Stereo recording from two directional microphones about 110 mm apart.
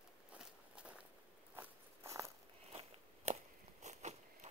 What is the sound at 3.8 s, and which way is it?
Biting, 90° right.